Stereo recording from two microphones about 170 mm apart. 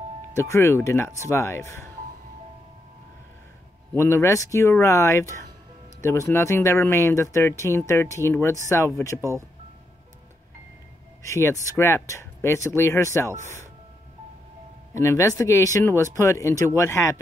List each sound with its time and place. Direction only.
0.4 s speech: 15° left (ahead or behind)
3.9 s speech: 15° left (ahead or behind)
11.2 s speech: 15° left (ahead or behind)
15.0 s speech: 15° left (ahead or behind)